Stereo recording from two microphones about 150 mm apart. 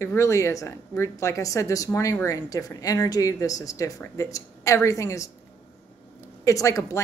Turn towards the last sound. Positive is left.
turn(degrees=20)  # may be behind; listen again after turning